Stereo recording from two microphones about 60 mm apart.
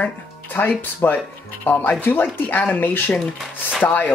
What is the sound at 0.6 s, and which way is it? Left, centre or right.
Speech, left.